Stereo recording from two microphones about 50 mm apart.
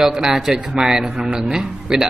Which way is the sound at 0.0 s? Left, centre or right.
Centre.